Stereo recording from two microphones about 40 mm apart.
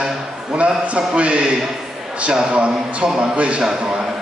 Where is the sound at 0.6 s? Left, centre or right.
Right.